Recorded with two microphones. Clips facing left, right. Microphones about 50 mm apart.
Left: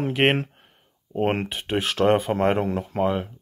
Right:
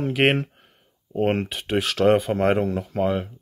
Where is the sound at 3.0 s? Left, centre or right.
Centre.